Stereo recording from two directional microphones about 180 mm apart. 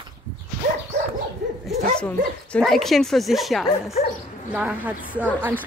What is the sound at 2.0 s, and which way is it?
Speech, 5° left (ahead or behind).